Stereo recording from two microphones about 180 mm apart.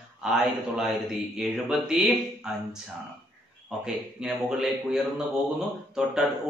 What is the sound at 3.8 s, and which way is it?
A man's voice, 5° right (ahead or behind).